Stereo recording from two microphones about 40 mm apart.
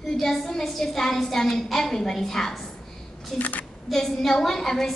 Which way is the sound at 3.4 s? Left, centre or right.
Left.